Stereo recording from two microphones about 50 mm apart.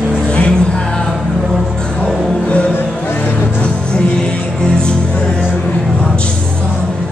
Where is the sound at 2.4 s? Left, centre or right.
Left.